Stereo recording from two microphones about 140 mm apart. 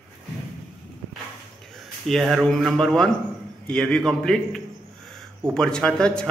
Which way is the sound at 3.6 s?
5° left (ahead or behind).